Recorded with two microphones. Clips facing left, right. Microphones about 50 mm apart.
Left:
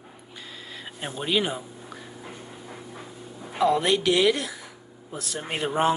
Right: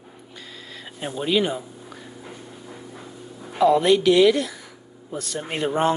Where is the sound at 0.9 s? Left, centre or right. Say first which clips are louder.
Right 4 dB; centre.